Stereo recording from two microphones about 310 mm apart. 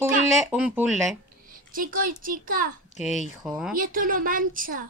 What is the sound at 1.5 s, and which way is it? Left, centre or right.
Speech, right.